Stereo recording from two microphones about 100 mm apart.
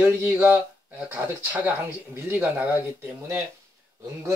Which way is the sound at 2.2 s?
20° right (ahead or behind).